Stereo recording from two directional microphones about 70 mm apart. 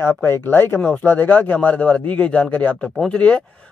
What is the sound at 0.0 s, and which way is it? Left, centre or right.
Speech, left.